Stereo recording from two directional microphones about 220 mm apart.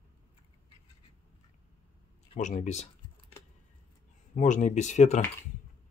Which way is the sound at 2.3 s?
35° left (ahead or behind).